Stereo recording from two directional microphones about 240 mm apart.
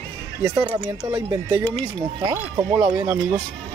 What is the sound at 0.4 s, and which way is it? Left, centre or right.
Speech, centre.